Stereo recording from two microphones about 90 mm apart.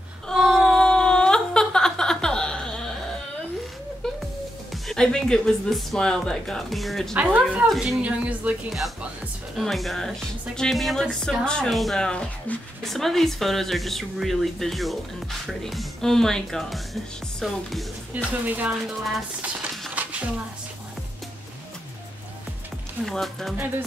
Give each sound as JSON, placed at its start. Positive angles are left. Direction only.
{"t": 0.3, "sound": "a sound", "side_deg": 5}
{"t": 4.8, "sound": "speech", "side_deg": 5}
{"t": 7.2, "sound": "speech", "side_deg": -15}
{"t": 7.7, "sound": "speech", "side_deg": 0}
{"t": 8.0, "sound": "speech", "side_deg": -15}
{"t": 8.6, "sound": "speech", "side_deg": 0}
{"t": 18.1, "sound": "speech", "side_deg": -15}
{"t": 19.9, "sound": "a sound", "side_deg": -15}
{"t": 23.0, "sound": "speech", "side_deg": 0}